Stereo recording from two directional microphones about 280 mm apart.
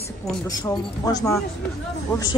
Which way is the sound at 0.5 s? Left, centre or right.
Centre.